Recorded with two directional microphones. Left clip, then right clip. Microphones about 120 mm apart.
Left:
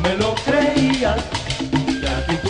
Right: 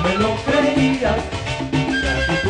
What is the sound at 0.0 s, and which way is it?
Music, 20° left (ahead or behind).